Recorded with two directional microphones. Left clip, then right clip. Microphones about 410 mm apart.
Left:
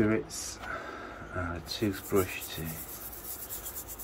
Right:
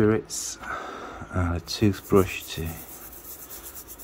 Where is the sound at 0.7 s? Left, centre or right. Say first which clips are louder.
Right 4 dB; centre.